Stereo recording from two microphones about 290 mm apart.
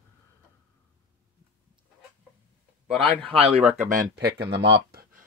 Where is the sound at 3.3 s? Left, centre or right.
Centre; by 4.7 s right.